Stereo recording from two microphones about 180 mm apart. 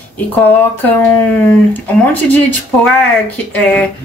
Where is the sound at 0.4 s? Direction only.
10° left (ahead or behind).